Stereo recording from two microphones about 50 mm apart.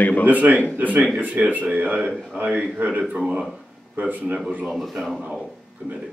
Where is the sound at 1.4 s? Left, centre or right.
Right.